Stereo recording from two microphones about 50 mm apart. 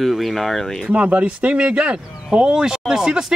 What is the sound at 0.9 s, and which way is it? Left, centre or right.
Speech, right.